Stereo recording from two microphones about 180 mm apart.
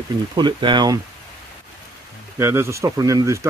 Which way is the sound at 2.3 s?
15° right (ahead or behind).